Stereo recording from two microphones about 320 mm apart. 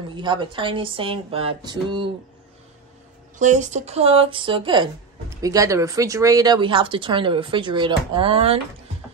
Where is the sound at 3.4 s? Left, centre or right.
Right.